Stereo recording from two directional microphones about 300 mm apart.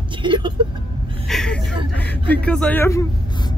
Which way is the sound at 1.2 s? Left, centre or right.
Centre.